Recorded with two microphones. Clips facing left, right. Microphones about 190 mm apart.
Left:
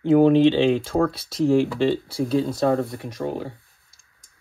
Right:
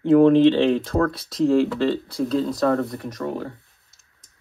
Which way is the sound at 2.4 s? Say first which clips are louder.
Even; 25° left (ahead or behind).